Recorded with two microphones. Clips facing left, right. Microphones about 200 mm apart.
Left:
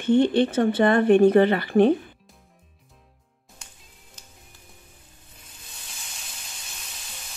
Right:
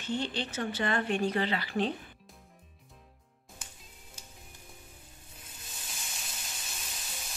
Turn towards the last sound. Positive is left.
turn(degrees=0)  # may be behind; listen again after turning